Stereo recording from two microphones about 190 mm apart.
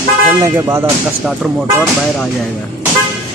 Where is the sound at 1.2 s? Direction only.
5° right (ahead or behind).